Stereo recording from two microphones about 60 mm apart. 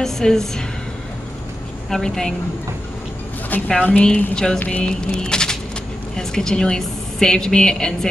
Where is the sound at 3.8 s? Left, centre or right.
Centre.